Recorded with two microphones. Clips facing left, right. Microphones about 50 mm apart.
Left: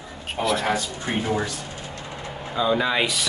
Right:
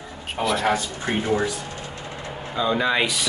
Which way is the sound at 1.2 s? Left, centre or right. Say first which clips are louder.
Right 3 dB; centre.